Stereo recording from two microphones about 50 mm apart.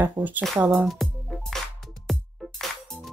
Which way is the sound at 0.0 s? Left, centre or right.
Right.